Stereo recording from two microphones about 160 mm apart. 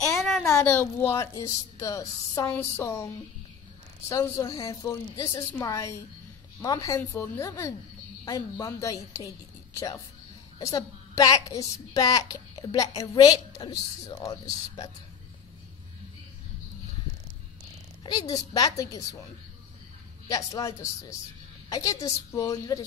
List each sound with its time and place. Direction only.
0.0 s child singing: centre (ahead or behind)
0.5 s a child's voice: 15° left (ahead or behind)
4.1 s a woman's voice: 20° left (ahead or behind)
18.0 s a woman's voice: 25° left (ahead or behind)
20.2 s a woman's voice: 20° left (ahead or behind)